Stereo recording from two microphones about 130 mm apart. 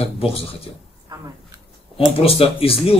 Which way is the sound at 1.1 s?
30° right (ahead or behind).